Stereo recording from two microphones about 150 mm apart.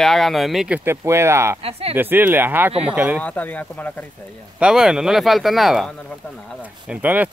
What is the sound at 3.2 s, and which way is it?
Speech, 10° left (ahead or behind).